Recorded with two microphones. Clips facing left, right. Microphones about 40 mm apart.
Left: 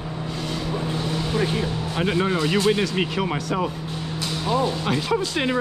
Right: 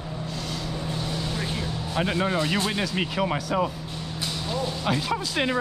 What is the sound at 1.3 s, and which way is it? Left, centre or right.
Speech, left.